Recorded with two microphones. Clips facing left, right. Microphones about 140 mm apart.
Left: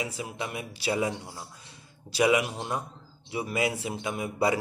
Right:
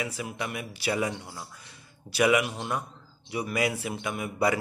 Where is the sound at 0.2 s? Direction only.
25° left (ahead or behind).